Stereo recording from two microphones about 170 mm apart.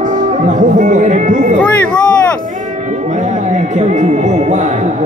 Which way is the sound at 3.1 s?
45° right (ahead or behind).